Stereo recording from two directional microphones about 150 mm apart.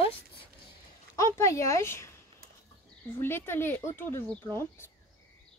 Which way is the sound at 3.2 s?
15° left (ahead or behind).